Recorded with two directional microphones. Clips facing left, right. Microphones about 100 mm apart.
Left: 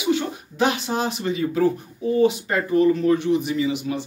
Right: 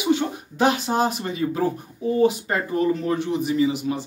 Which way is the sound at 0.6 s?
40° right (ahead or behind).